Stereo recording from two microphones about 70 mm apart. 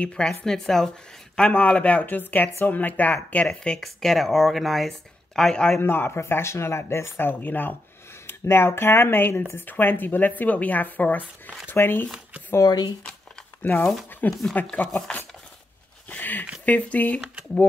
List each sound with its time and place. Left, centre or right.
0.0 s speech: centre
1.5 s speech: left
3.4 s speech: centre
5.8 s speech: left
12.6 s speech: left
13.6 s speech: left
16.1 s a sound: left
16.6 s speech: left